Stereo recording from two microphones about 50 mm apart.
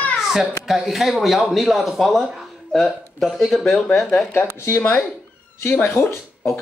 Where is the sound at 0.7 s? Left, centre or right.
Centre.